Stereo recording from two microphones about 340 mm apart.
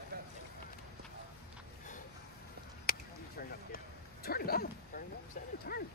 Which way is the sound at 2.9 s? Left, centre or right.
Left.